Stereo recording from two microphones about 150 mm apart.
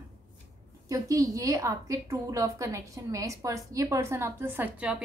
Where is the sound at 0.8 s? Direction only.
20° right (ahead or behind).